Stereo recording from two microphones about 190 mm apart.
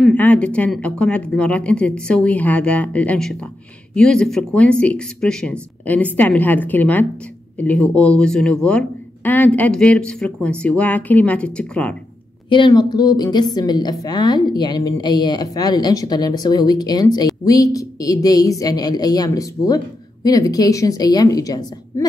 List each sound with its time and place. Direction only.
0.0 s speech: 10° left (ahead or behind)
12.4 s a woman's voice: 25° left (ahead or behind)